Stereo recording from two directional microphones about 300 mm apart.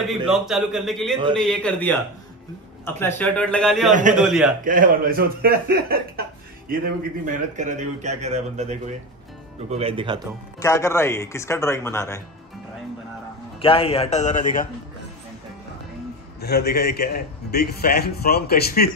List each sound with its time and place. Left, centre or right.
0.1 s a man's voice: centre
4.6 s speech: right
7.5 s speech: right
10.6 s speech: centre
13.6 s a man's voice: centre
16.3 s a man's voice: left